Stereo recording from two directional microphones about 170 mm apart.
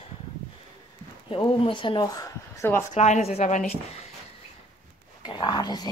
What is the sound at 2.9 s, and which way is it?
Speech, 45° left (ahead or behind).